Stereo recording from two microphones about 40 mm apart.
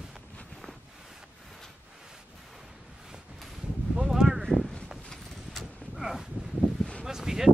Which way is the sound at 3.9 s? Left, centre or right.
Centre.